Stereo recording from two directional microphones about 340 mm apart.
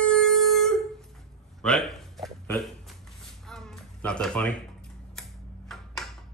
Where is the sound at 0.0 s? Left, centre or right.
Centre.